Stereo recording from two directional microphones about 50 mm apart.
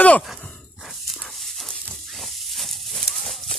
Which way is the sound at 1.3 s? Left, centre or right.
Centre.